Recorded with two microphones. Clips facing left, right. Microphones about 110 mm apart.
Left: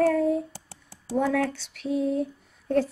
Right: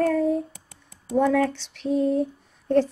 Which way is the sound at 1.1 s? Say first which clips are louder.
Right 4 dB; centre (ahead or behind).